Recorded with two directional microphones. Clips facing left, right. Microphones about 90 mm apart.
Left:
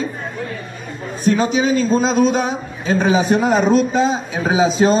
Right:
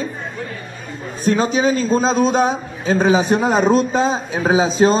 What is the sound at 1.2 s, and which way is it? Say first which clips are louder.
A man's voice: even; 35° right (ahead or behind).